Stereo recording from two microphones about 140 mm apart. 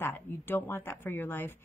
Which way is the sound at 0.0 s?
15° left (ahead or behind).